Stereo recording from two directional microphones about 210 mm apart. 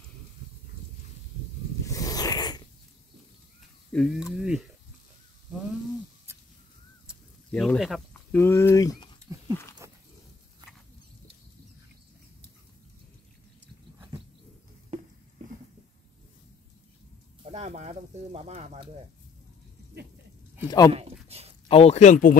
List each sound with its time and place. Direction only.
1.9 s zipper: 15° left (ahead or behind)
3.9 s speech: centre (ahead or behind)
7.1 s speech: 5° left (ahead or behind)
9.8 s a sound: 15° right (ahead or behind)
17.5 s snake: 30° right (ahead or behind)
20.6 s speech: 20° left (ahead or behind)
20.9 s a sound: 30° right (ahead or behind)
21.6 s speech: 30° left (ahead or behind)